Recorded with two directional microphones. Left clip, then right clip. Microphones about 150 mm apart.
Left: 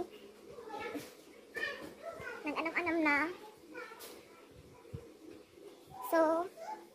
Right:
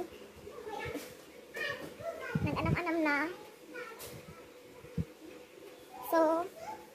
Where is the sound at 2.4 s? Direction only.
5° left (ahead or behind).